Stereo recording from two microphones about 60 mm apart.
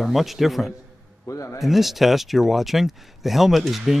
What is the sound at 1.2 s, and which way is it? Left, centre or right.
Speech, left.